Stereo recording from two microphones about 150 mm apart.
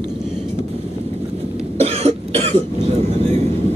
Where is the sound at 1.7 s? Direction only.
45° right (ahead or behind).